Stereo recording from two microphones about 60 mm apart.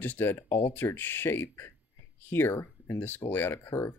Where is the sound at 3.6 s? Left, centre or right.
Left.